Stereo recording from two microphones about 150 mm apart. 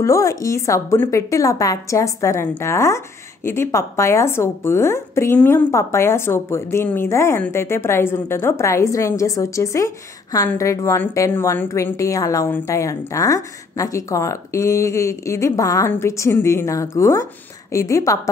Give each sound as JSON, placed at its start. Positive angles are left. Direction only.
{"t": 0.0, "sound": "a woman's voice", "side_deg": 20}